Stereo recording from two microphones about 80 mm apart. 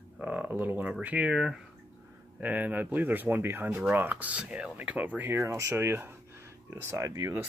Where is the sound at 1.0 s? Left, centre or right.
Centre.